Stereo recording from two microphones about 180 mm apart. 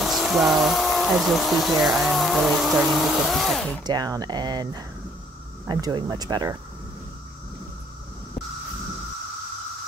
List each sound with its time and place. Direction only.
0.0 s speech: centre (ahead or behind)
3.8 s speech: 20° right (ahead or behind)